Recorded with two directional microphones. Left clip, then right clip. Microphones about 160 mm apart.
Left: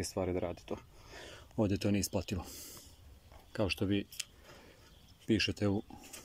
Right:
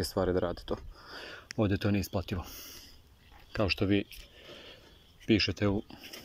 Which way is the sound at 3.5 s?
10° left (ahead or behind).